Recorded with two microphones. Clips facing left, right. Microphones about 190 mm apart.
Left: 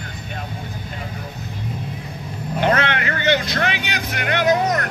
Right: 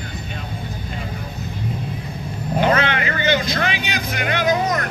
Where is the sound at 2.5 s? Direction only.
65° left (ahead or behind).